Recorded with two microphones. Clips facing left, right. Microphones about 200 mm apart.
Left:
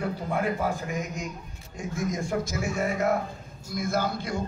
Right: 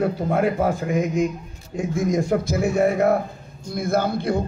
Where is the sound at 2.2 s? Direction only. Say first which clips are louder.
Right 8 dB; 60° right (ahead or behind).